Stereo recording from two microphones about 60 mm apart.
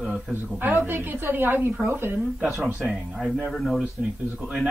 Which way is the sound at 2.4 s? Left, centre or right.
Right.